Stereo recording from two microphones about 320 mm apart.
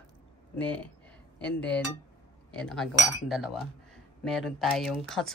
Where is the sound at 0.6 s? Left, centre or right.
Centre.